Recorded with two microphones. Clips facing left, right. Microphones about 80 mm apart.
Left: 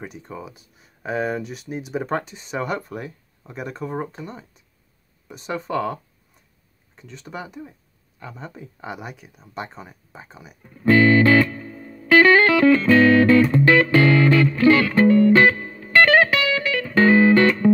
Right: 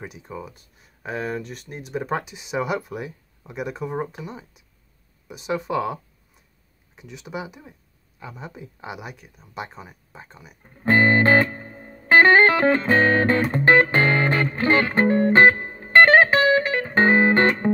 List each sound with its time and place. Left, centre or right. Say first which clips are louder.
0.0 s speech: left 1 dB; centre
7.0 s speech: right 2 dB; centre
10.6 s music: left 3 dB; right